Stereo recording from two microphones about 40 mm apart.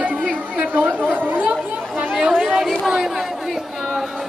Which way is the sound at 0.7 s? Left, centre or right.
Right.